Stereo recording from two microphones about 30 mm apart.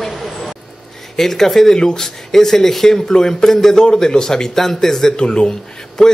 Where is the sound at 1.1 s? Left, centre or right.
Centre.